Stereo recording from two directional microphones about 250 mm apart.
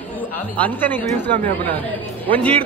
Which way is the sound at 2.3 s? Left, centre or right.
Centre.